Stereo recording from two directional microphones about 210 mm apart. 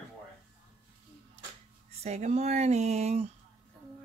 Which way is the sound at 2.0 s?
30° right (ahead or behind).